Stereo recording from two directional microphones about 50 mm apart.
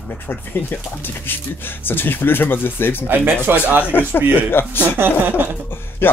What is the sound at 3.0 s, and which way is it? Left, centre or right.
Speech, right.